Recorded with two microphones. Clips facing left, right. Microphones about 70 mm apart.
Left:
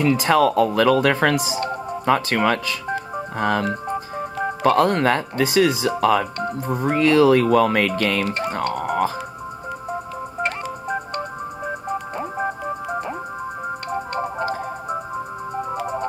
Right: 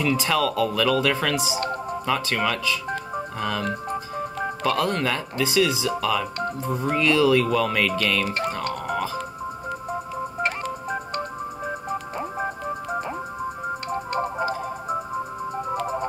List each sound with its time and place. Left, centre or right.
0.0 s speech: left
1.6 s music: centre
2.0 s speech: left
3.6 s music: centre
4.6 s speech: left
8.5 s music: left
10.4 s music: centre
15.7 s music: centre